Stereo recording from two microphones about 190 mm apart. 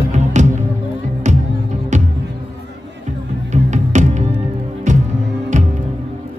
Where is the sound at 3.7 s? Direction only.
40° right (ahead or behind).